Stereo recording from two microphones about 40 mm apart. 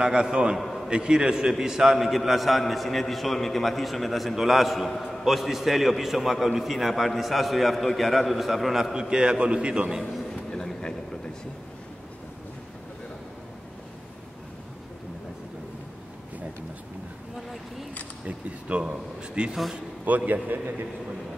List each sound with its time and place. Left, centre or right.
0.0 s a man's voice: centre
0.6 s a man's voice: centre
0.8 s a man's voice: right; by 8.9 s centre
8.9 s a man's voice: right
10.3 s a sound: centre
18.2 s a sound: right
20.1 s a man's voice: right